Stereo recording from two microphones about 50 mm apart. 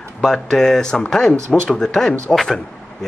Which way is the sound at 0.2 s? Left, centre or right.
Centre.